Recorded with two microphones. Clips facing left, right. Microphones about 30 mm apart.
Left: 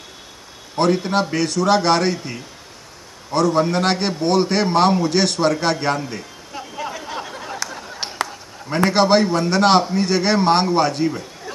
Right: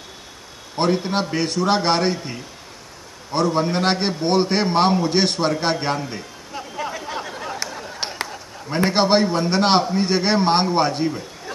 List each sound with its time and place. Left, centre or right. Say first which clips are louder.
0.7 s a man's voice: left 3 dB; centre
3.5 s a man's voice: left 2 dB; centre
5.1 s a sound: left 2 dB; centre
8.8 s a man's voice: left 2 dB; centre